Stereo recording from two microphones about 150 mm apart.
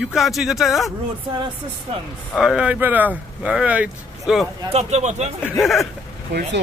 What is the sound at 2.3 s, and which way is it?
Speech, 5° right (ahead or behind).